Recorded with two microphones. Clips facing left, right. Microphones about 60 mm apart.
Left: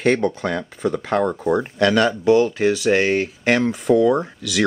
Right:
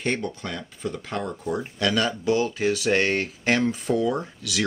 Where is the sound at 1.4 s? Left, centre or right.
Left.